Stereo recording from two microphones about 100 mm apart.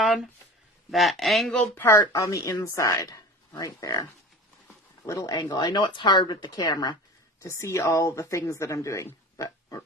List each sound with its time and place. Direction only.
0.0 s a sound: 5° right (ahead or behind)
0.8 s speech: centre (ahead or behind)
1.8 s speech: 30° left (ahead or behind)
5.0 s speech: 35° left (ahead or behind)
5.3 s speech: 45° left (ahead or behind)
7.4 s speech: 30° left (ahead or behind)